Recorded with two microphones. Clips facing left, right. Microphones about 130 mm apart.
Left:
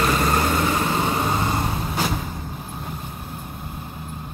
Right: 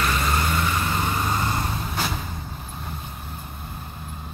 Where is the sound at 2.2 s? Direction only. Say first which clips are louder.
Left 3 dB; 10° left (ahead or behind).